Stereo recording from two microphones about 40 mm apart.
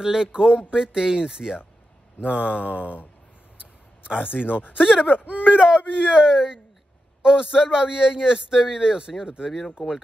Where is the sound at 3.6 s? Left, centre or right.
Right.